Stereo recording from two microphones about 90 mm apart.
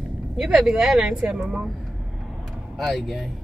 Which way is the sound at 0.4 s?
5° right (ahead or behind).